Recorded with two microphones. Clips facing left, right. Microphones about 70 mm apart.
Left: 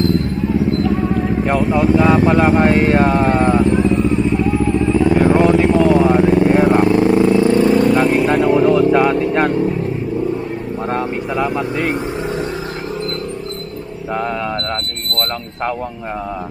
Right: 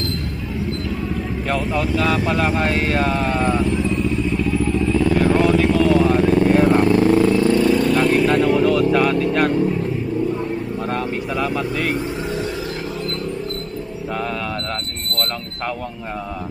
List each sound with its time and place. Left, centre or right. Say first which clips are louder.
1.7 s speech: left 8 dB; left
3.6 s vehicle: left 6 dB; left
7.9 s vehicle: left 2 dB; centre
10.9 s vehicle: left 5 dB; left